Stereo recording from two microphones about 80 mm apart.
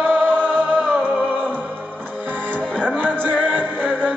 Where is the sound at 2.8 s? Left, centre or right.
Right.